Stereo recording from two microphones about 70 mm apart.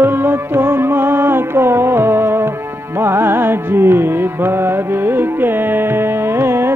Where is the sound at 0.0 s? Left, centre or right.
Right.